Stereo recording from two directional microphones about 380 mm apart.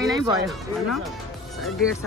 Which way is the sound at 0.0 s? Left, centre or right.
Centre.